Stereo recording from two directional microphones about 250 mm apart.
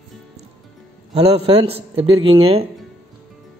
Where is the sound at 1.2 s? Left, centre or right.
Right.